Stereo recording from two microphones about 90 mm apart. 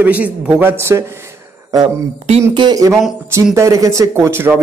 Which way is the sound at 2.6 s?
50° right (ahead or behind).